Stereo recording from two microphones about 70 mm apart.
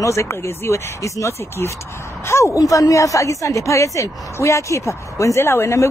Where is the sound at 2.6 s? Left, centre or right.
Left.